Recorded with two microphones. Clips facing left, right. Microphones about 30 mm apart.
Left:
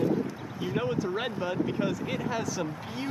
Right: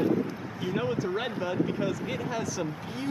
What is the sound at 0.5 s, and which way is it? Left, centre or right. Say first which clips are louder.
Speech: even; centre.